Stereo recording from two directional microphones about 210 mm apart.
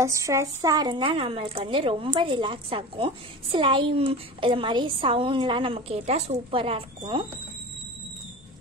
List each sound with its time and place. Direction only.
0.0 s a woman's voice: 15° right (ahead or behind)